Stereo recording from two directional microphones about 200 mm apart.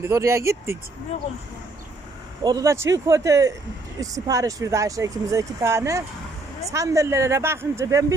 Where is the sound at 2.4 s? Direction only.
20° right (ahead or behind).